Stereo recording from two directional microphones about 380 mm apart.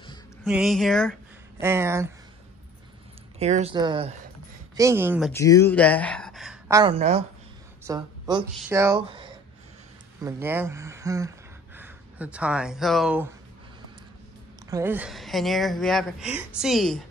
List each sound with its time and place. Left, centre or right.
0.4 s speech: centre
3.3 s speech: centre
5.3 s a woman's voice: centre
14.7 s speech: centre